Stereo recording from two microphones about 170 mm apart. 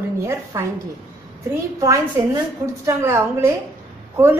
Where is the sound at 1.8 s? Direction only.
20° right (ahead or behind).